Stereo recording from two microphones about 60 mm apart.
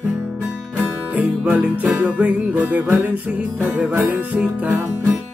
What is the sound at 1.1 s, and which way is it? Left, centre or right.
Music, right.